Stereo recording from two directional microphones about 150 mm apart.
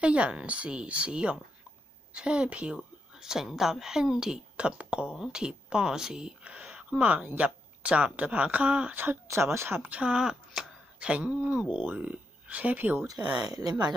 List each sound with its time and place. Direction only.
0.0 s a woman's voice: 10° right (ahead or behind)
13.0 s speech: 25° right (ahead or behind)